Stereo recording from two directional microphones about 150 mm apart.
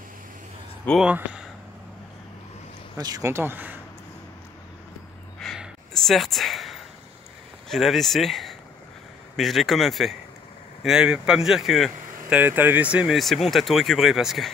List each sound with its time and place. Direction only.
1.0 s speech: 5° right (ahead or behind)
3.0 s speech: 25° right (ahead or behind)
5.4 s a sound: centre (ahead or behind)
7.7 s speech: centre (ahead or behind)
12.4 s speech: 10° right (ahead or behind)